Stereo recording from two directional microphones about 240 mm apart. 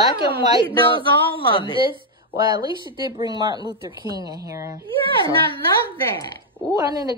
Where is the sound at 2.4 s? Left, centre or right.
Centre.